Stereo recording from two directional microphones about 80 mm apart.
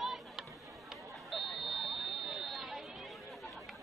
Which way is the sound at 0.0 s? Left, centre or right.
Centre.